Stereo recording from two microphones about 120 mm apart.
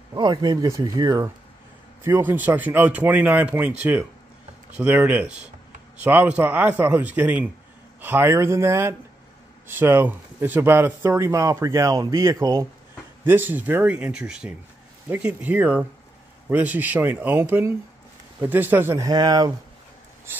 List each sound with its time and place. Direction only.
0.1 s speech: 35° right (ahead or behind)
2.0 s speech: 15° right (ahead or behind); by 19.5 s 35° right (ahead or behind)
20.3 s mechanisms: 20° right (ahead or behind)